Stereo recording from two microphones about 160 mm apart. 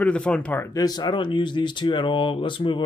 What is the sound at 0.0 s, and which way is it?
Speech, 5° left (ahead or behind).